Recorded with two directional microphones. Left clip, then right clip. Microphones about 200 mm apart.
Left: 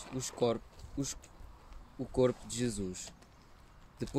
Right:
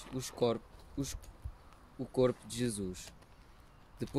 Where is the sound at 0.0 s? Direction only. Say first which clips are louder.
Left 1 dB; centre (ahead or behind).